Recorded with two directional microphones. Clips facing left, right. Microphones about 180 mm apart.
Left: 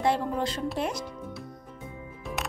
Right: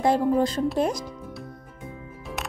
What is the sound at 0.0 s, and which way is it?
A woman's voice, 40° right (ahead or behind).